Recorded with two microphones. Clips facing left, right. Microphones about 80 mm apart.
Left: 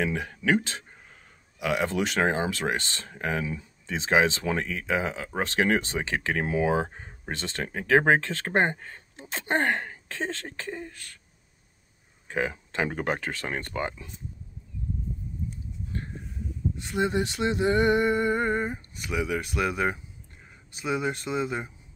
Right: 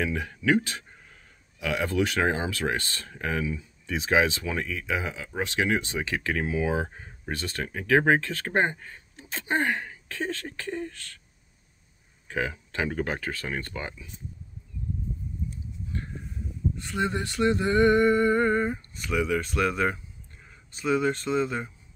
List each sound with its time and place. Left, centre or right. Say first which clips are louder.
0.0 s speech: even; left
10.0 s speech: right 1 dB; left
10.7 s speech: right 5 dB; centre
12.3 s speech: left 1 dB; left
16.7 s a sound: left 3 dB; centre